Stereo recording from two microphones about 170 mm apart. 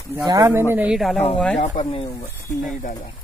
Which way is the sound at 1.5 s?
40° left (ahead or behind).